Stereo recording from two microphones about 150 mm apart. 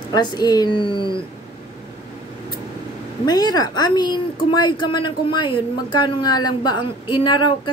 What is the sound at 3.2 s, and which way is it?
A woman's voice, 25° left (ahead or behind).